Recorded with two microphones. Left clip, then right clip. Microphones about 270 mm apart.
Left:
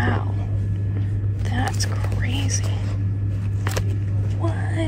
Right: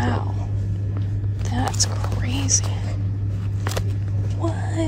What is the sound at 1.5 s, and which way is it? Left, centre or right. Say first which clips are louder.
Whispering: right 2 dB; centre.